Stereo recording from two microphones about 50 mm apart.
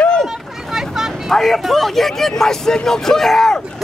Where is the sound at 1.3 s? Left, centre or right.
Centre.